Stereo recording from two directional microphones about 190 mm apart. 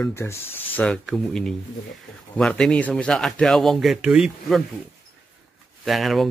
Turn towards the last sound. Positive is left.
turn(degrees=0)  # may be behind; listen again after turning